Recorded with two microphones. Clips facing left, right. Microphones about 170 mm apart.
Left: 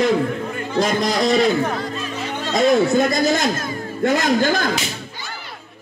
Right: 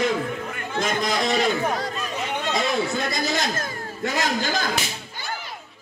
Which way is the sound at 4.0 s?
55° left (ahead or behind).